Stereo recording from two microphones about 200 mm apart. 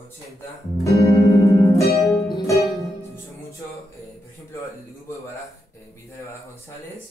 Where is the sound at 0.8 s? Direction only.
15° left (ahead or behind).